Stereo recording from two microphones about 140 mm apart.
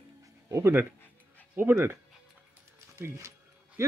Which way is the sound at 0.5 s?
15° right (ahead or behind).